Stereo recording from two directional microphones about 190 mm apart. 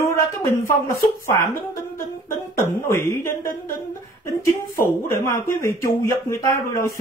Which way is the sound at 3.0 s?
15° left (ahead or behind).